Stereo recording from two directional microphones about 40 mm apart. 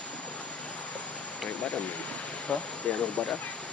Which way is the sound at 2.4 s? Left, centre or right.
Left.